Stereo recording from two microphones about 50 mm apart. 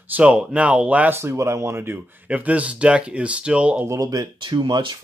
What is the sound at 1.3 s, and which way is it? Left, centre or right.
Speech, right.